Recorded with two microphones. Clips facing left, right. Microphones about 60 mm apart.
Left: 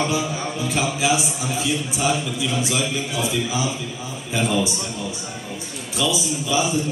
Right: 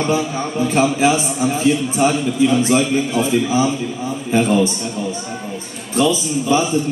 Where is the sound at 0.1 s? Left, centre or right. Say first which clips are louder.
Right 5 dB; right.